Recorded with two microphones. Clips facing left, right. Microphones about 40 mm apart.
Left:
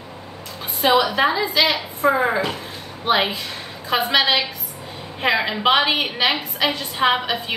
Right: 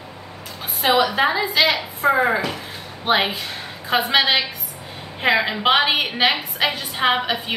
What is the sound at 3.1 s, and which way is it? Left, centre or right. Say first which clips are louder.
A woman's voice: even; centre.